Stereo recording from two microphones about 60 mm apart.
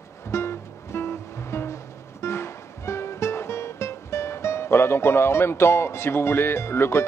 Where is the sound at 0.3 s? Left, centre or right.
Left.